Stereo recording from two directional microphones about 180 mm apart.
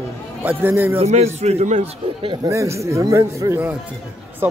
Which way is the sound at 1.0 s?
35° right (ahead or behind).